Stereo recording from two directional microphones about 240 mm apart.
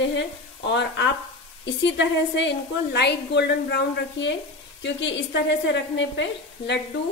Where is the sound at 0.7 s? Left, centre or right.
Left.